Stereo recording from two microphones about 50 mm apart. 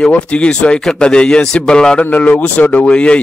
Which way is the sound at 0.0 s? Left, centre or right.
Left.